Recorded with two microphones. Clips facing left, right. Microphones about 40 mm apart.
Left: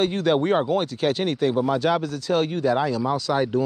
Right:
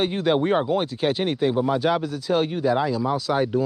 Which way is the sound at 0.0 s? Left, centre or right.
Centre.